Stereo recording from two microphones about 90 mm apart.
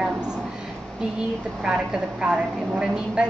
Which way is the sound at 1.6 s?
10° right (ahead or behind).